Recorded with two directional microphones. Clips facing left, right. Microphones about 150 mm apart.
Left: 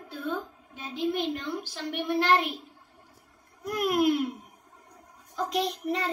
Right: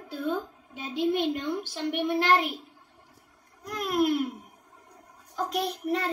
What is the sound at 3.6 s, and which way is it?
Speech, 10° left (ahead or behind).